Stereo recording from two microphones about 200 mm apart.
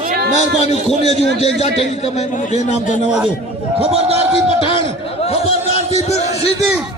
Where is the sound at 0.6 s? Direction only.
35° left (ahead or behind).